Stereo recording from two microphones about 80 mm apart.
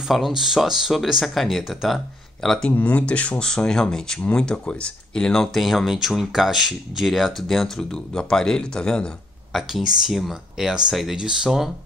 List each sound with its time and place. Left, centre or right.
0.1 s speech: centre
2.7 s speech: centre
9.6 s speech: centre